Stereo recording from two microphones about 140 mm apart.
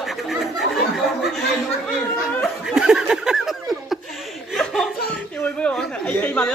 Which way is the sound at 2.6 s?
5° right (ahead or behind).